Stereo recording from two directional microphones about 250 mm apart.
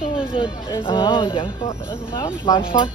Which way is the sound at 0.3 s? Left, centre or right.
Centre.